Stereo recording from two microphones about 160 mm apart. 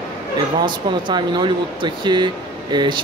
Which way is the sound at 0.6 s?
30° right (ahead or behind).